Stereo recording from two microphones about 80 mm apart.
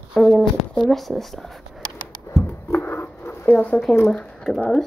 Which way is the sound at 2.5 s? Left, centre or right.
Left.